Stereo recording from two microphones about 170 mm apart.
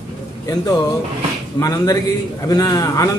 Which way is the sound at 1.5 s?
20° left (ahead or behind).